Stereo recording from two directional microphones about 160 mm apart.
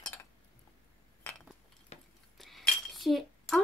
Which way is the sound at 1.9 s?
40° left (ahead or behind).